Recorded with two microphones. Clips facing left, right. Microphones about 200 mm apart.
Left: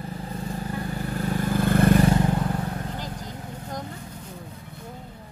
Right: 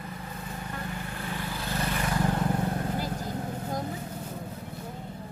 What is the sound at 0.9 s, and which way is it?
Vehicle, 40° left (ahead or behind).